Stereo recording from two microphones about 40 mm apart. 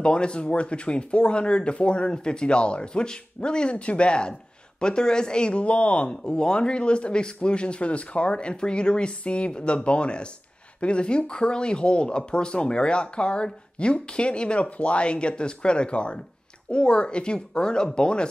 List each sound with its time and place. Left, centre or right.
0.0 s speech: left
6.2 s speech: left